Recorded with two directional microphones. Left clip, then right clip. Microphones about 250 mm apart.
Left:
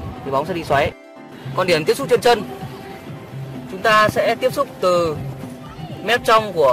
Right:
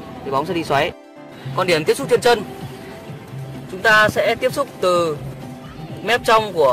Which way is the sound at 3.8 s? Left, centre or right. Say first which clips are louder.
Right 1 dB; centre.